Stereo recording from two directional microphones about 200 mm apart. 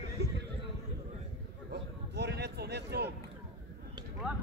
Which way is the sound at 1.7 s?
55° right (ahead or behind).